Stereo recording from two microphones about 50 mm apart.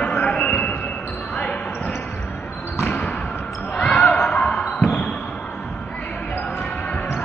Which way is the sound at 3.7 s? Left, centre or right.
Left.